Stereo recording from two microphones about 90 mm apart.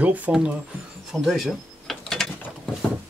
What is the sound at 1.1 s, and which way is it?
Mechanisms, centre (ahead or behind).